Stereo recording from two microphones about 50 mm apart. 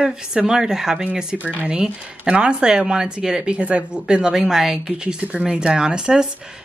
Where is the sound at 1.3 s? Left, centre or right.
Right.